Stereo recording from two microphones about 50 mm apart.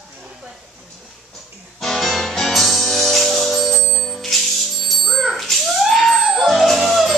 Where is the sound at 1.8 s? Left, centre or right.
Centre.